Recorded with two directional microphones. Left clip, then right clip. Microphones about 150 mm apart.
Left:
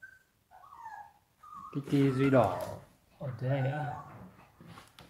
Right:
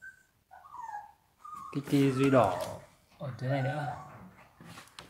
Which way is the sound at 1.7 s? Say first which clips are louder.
Right 1 dB; 20° right (ahead or behind).